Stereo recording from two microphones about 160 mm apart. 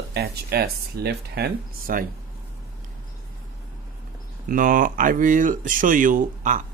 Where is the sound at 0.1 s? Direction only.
85° right.